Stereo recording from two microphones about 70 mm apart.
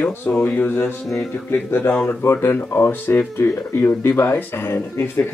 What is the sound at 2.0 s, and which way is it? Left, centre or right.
Speech, left.